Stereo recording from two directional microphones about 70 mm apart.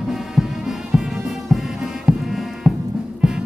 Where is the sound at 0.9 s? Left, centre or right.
Centre.